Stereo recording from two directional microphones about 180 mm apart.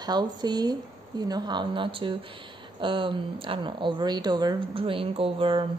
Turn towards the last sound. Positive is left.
turn(degrees=-30)  # may be behind; listen again after turning